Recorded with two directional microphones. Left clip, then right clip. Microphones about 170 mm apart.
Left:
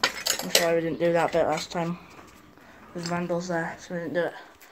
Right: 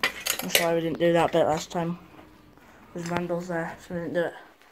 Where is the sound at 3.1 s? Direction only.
15° right (ahead or behind).